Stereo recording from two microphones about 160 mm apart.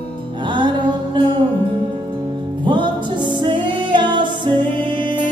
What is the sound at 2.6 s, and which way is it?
Music, 30° right (ahead or behind).